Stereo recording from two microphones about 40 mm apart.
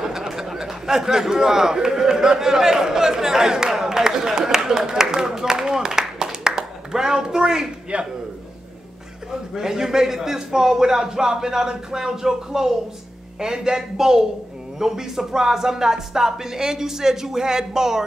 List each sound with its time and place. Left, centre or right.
0.0 s a sound: centre
4.4 s a woman's voice: centre
9.5 s a man's voice: centre